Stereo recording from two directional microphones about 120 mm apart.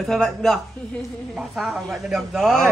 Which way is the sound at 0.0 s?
5° left (ahead or behind).